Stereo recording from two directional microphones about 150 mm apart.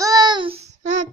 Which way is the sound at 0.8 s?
55° right (ahead or behind).